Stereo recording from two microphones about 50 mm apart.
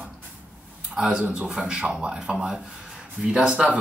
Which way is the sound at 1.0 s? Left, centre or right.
Centre.